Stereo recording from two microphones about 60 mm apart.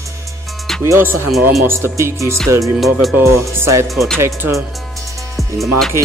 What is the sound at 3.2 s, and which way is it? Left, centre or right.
Speech, right.